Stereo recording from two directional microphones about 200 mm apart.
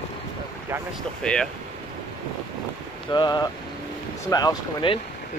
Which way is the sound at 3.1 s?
20° left (ahead or behind).